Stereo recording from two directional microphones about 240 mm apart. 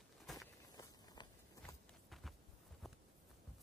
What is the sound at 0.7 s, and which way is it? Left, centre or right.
Walk, centre.